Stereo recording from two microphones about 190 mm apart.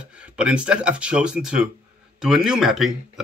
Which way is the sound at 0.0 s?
5° right (ahead or behind).